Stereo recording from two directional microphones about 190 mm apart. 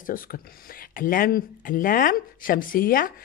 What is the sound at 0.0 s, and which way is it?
A woman's voice, 50° left (ahead or behind).